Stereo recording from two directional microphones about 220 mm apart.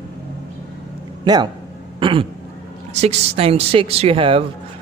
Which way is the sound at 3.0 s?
30° right (ahead or behind).